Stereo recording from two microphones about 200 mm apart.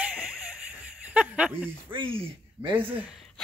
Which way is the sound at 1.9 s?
25° right (ahead or behind).